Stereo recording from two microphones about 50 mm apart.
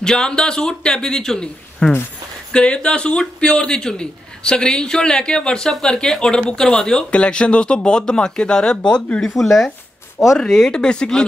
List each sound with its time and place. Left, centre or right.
0.0 s a man's voice: centre
9.2 s a man's voice: centre